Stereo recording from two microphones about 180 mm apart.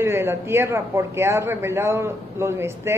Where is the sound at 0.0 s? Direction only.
15° right (ahead or behind).